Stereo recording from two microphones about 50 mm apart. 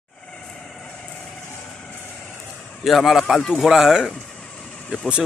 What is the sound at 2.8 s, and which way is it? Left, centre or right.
Speech, centre.